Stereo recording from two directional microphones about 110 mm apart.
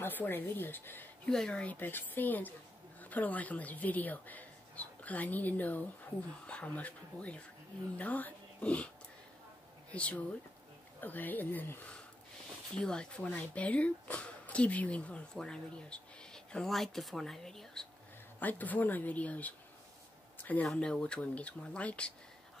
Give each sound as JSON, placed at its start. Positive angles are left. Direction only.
{"t": 0.0, "sound": "a woman's voice", "side_deg": 20}
{"t": 9.9, "sound": "speech", "side_deg": 10}
{"t": 18.4, "sound": "speech", "side_deg": 15}
{"t": 20.6, "sound": "speech", "side_deg": 10}